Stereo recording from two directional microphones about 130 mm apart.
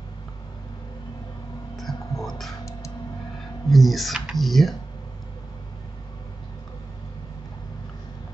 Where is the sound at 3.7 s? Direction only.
Centre (ahead or behind).